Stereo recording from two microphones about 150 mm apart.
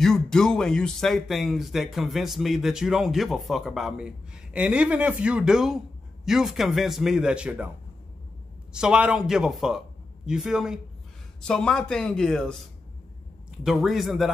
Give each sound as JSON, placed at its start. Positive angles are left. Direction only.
{"t": 0.0, "sound": "speech", "side_deg": 5}
{"t": 8.7, "sound": "speech", "side_deg": -5}